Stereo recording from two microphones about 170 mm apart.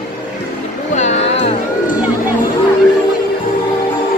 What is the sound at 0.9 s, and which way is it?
Speech, 40° left (ahead or behind).